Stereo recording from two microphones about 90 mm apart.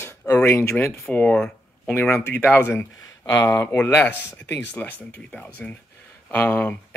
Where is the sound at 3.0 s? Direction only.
45° left (ahead or behind).